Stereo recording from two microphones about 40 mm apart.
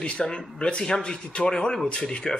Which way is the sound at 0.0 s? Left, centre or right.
Left.